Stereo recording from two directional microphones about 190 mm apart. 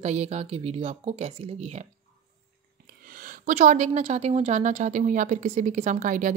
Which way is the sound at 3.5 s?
40° right (ahead or behind).